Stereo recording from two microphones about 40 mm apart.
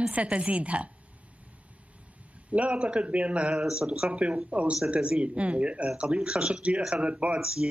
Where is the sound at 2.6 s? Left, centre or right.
Right.